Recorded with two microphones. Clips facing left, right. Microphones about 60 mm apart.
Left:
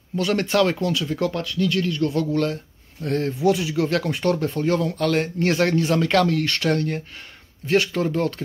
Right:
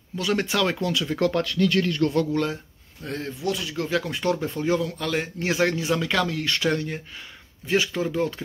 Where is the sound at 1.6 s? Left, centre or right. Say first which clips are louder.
Left 1 dB; right.